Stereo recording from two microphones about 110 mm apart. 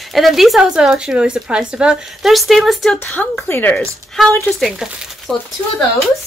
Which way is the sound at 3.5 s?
15° left (ahead or behind).